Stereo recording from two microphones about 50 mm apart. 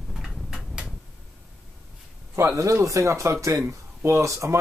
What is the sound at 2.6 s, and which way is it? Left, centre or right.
Speech, right.